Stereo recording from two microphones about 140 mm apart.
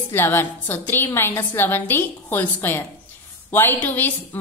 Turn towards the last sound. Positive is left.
turn(degrees=15)  # may be behind; listen again after turning